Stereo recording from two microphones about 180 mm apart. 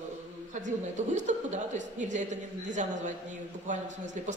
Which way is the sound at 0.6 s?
45° right (ahead or behind).